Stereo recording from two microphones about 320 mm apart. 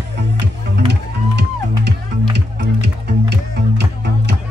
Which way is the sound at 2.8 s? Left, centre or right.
Right.